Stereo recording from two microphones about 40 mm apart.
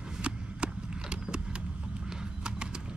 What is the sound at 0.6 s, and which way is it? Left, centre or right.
Mechanisms, right.